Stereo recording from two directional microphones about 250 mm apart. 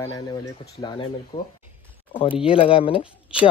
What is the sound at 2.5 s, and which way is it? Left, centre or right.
Speech, left.